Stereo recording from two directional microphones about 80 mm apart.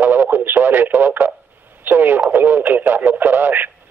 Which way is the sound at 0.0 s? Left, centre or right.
Right.